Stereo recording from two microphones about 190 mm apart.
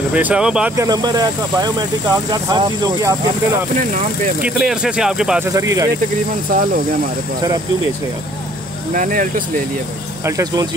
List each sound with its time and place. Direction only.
0.1 s speech: 5° right (ahead or behind)
0.7 s speech: 20° right (ahead or behind)
4.4 s speech: 5° right (ahead or behind)
5.5 s speech: 15° right (ahead or behind)
8.9 s speech: 45° right (ahead or behind)
10.2 s speech: 20° right (ahead or behind)